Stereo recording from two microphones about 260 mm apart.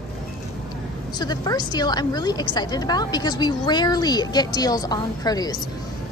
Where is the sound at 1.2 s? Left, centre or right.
Centre.